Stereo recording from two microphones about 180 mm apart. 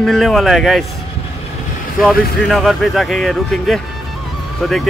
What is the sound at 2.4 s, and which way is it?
Speech, centre (ahead or behind).